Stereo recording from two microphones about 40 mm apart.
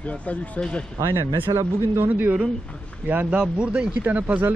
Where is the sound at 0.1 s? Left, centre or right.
Left.